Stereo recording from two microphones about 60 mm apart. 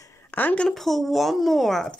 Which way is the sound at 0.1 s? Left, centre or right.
Left.